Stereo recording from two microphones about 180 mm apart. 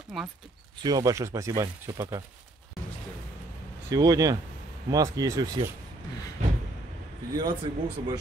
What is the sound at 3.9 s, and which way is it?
Speech, 20° right (ahead or behind).